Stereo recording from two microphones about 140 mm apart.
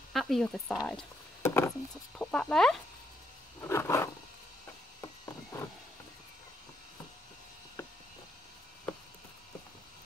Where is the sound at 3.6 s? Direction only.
20° left (ahead or behind).